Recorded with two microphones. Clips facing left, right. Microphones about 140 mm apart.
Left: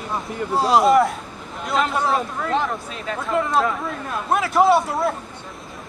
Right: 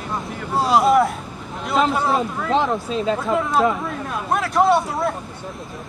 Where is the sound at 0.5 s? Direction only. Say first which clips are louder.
Even; centre (ahead or behind).